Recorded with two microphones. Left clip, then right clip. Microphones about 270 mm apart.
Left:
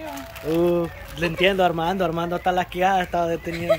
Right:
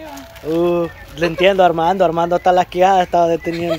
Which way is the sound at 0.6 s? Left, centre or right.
Centre.